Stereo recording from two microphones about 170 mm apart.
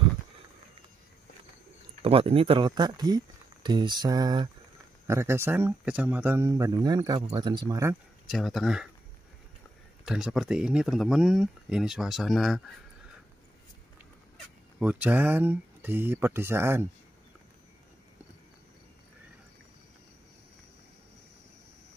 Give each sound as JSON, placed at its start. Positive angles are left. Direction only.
{"t": 2.0, "sound": "speech", "side_deg": -35}
{"t": 3.6, "sound": "a sound", "side_deg": -25}
{"t": 5.0, "sound": "speech", "side_deg": -15}
{"t": 8.3, "sound": "speech", "side_deg": 0}
{"t": 10.0, "sound": "speech", "side_deg": -5}
{"t": 14.8, "sound": "speech", "side_deg": -10}